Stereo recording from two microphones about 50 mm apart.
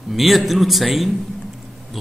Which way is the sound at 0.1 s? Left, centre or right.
Centre.